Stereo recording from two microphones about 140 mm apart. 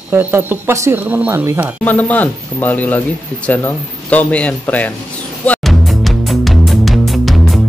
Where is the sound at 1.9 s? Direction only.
10° left (ahead or behind).